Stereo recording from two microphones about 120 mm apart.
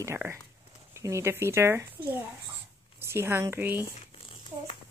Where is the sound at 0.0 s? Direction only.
20° right (ahead or behind).